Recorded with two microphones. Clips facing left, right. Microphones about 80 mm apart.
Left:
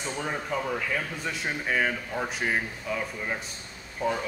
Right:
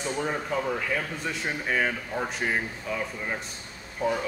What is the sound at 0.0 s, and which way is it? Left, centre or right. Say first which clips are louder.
Speech: right 3 dB; centre.